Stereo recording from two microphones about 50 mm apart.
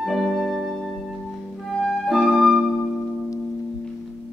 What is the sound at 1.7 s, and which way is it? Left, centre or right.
Music, centre.